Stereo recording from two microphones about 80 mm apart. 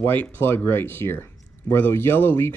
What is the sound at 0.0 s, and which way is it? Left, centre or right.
Speech, left.